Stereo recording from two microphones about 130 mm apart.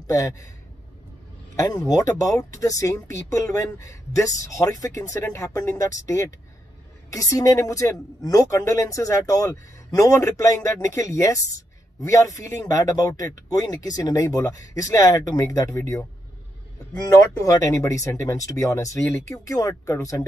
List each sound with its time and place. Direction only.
0.0 s speech: 25° left (ahead or behind)
1.6 s speech: 30° left (ahead or behind)
17.1 s speech: 25° left (ahead or behind)